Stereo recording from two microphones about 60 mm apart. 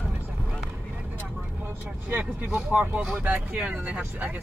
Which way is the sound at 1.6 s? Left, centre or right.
Right.